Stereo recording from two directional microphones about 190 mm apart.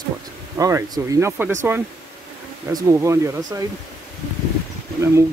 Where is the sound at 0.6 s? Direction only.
15° right (ahead or behind).